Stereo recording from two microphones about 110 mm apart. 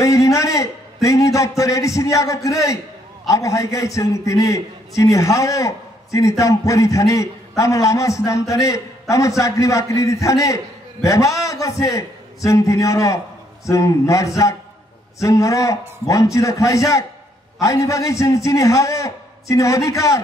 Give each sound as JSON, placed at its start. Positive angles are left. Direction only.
{"t": 0.0, "sound": "a man's voice", "side_deg": 30}